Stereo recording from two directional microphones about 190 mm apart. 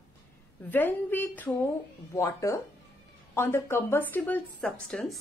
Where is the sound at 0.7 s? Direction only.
10° left (ahead or behind).